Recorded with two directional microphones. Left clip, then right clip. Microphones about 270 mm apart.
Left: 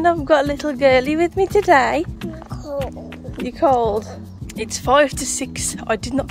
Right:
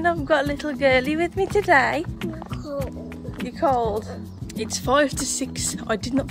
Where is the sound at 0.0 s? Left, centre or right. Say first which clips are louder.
Left 5 dB; left.